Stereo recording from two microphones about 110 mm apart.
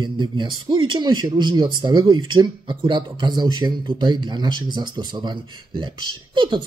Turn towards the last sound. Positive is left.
turn(degrees=-50)  # may be behind; listen again after turning